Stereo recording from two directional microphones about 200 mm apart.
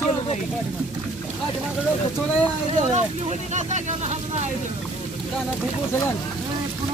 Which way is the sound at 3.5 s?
35° right (ahead or behind).